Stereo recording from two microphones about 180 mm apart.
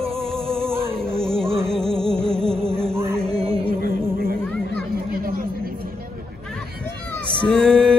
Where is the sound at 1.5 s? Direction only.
30° right (ahead or behind).